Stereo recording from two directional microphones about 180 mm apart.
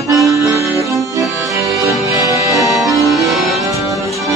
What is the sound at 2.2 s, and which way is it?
Music, 20° right (ahead or behind).